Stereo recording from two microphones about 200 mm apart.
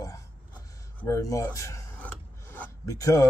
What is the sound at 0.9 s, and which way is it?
Filing, 15° left (ahead or behind).